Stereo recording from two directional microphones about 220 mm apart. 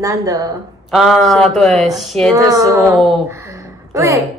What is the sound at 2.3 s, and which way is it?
Speech, 15° right (ahead or behind).